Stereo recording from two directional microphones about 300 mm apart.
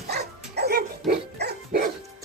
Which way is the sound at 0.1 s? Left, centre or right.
Right.